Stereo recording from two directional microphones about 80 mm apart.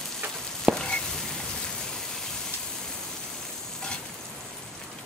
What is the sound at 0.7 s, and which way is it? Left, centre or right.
Stir, centre.